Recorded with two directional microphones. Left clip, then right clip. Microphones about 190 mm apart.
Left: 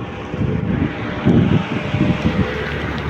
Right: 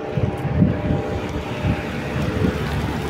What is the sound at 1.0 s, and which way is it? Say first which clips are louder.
Vehicle: left 7 dB; 70° right (ahead or behind).